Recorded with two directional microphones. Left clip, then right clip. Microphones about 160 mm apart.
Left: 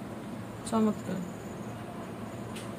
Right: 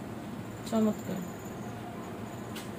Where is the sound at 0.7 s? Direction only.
15° left (ahead or behind).